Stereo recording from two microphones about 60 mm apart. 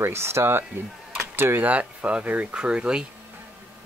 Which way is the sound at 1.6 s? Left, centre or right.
Right.